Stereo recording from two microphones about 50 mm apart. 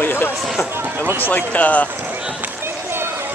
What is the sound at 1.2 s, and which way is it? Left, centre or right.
Speech, left.